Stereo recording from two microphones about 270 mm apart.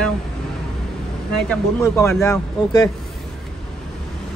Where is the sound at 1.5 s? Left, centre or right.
Centre.